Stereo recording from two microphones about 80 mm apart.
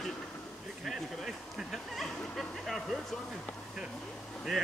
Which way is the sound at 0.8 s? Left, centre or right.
Centre.